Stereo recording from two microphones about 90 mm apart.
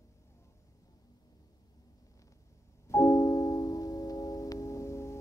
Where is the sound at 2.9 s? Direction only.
35° left (ahead or behind).